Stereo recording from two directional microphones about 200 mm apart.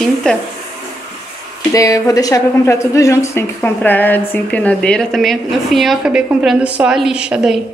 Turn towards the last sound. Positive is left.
turn(degrees=-5)  # may be behind; listen again after turning